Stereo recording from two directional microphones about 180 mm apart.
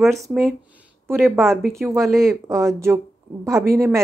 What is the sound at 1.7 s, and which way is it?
A woman's voice, 15° right (ahead or behind).